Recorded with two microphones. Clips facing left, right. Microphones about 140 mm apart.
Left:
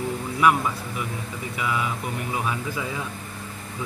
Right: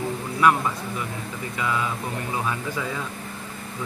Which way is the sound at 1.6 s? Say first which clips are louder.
Right 1 dB; 10° left (ahead or behind).